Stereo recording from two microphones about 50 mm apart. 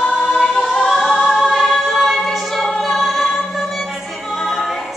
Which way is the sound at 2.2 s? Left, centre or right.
Centre.